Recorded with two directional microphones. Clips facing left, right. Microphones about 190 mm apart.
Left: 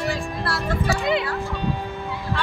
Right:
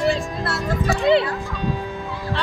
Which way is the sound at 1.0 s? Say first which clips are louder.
Right 10 dB; 30° right (ahead or behind).